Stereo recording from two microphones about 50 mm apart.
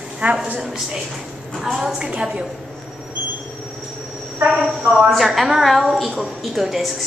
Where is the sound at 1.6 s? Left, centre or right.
Centre.